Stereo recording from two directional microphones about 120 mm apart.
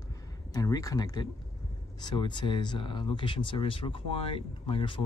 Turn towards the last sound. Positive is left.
turn(degrees=45)  # may be behind; listen again after turning